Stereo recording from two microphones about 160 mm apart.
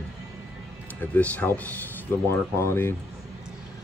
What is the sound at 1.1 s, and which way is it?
Speech, 10° left (ahead or behind).